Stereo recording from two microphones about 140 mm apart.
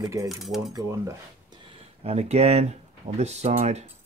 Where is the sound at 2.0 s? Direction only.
50° right (ahead or behind).